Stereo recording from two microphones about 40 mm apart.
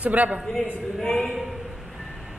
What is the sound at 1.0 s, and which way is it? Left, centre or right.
Speech, centre.